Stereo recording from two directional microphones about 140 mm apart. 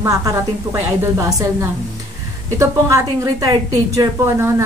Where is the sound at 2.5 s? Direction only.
20° right (ahead or behind).